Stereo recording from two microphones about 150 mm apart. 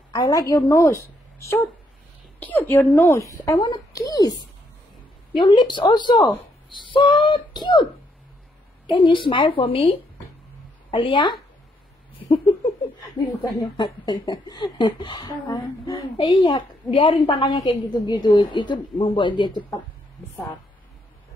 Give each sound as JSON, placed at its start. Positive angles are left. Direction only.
{"t": 0.1, "sound": "a woman's voice", "side_deg": 25}
{"t": 5.4, "sound": "speech", "side_deg": 30}
{"t": 8.8, "sound": "speech", "side_deg": 35}
{"t": 10.9, "sound": "speech", "side_deg": 35}
{"t": 13.6, "sound": "speech", "side_deg": 30}